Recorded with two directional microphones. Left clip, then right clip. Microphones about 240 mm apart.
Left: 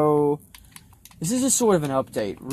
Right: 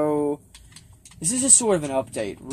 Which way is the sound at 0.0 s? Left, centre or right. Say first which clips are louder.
Left 3 dB; left.